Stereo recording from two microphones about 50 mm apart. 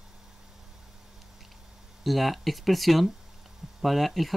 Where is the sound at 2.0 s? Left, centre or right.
Centre.